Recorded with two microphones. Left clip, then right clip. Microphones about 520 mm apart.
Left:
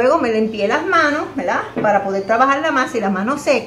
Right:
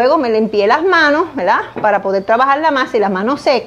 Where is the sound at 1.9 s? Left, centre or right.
Right.